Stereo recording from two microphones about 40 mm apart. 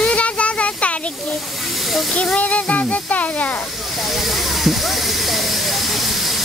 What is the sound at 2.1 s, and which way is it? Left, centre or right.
Speech, left.